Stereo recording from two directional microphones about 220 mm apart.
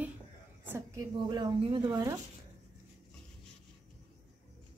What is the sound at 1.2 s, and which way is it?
Speech, 20° right (ahead or behind).